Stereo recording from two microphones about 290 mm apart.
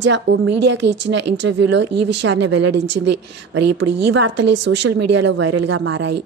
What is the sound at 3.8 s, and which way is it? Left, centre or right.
A woman's voice, right.